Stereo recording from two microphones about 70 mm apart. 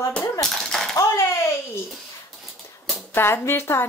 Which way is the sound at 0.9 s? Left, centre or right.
Left.